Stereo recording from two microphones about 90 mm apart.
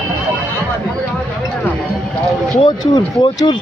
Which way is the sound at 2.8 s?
50° left (ahead or behind).